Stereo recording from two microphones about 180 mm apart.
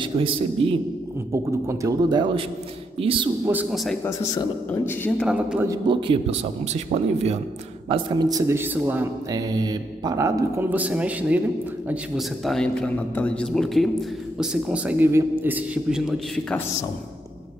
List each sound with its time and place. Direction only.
0.0 s a man's voice: 30° right (ahead or behind)
1.3 s a man's voice: 15° right (ahead or behind)
3.7 s a man's voice: centre (ahead or behind)
5.3 s a man's voice: 5° right (ahead or behind)
5.7 s speech: 25° right (ahead or behind)
7.9 s a man's voice: 20° right (ahead or behind)
9.3 s a man's voice: 20° right (ahead or behind); by 16.6 s 5° left (ahead or behind)